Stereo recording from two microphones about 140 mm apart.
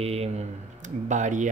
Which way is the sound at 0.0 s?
50° right (ahead or behind).